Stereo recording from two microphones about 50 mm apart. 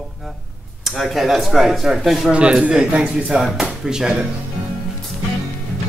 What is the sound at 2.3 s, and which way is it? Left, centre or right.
Speech, right.